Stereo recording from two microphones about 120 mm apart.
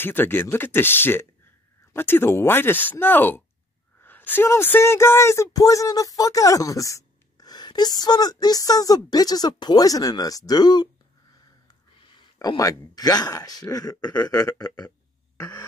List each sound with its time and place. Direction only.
0.0 s speech: 15° left (ahead or behind); by 10.9 s 35° left (ahead or behind)
12.2 s speech: 35° left (ahead or behind)
15.3 s a sound: 15° left (ahead or behind)